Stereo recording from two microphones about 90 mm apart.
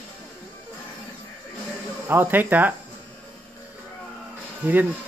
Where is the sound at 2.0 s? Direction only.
20° right (ahead or behind).